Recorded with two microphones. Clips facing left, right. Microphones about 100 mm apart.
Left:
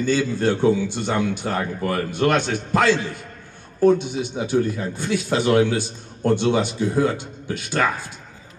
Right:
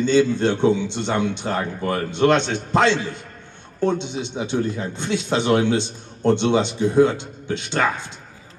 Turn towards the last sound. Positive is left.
turn(degrees=-25)  # may be behind; listen again after turning